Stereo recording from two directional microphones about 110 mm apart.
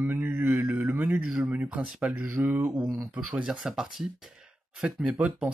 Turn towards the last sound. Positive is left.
turn(degrees=-10)  # may be behind; listen again after turning